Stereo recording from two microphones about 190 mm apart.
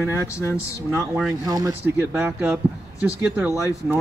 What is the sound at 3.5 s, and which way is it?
Speech, 15° left (ahead or behind).